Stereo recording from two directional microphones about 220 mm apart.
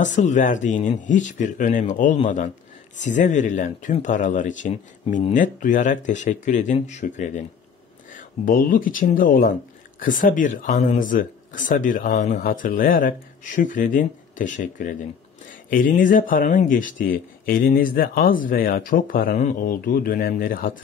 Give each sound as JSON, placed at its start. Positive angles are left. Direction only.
{"t": 0.0, "sound": "speech", "side_deg": 35}